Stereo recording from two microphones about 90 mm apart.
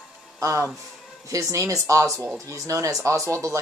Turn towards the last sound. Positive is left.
turn(degrees=-35)  # may be behind; listen again after turning